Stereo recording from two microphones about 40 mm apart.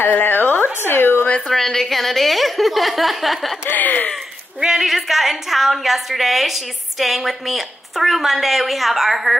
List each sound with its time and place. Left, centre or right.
0.2 s a sound: left
0.8 s speech: left
1.5 s a woman's voice: centre
3.7 s speech: left
4.6 s speech: centre
4.8 s a woman's voice: centre